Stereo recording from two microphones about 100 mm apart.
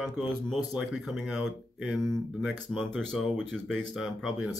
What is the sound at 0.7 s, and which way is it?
Speech, 5° right (ahead or behind).